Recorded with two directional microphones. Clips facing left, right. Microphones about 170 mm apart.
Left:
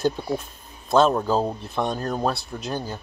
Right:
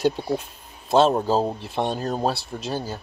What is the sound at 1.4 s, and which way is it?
Speech, 5° right (ahead or behind).